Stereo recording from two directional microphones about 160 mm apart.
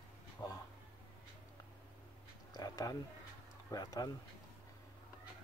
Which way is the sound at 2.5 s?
20° left (ahead or behind).